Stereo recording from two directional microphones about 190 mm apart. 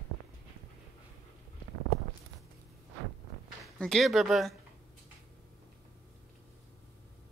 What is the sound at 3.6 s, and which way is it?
Speech, centre (ahead or behind).